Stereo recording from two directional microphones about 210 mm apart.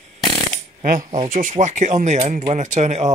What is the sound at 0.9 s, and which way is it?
Speech, 35° right (ahead or behind).